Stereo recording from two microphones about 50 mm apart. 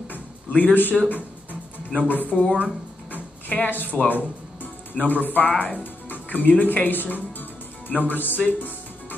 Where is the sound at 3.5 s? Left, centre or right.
Left.